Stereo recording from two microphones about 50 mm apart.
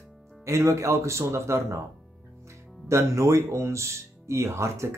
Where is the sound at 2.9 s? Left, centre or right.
Right.